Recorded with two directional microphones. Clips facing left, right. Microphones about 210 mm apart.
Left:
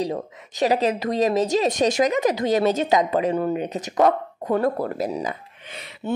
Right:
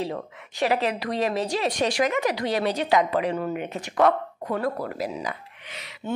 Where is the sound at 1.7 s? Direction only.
20° left (ahead or behind).